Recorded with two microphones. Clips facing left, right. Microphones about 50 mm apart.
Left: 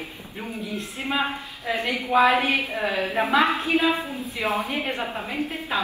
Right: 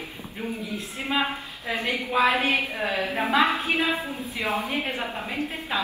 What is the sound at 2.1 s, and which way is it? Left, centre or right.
A woman's voice, left.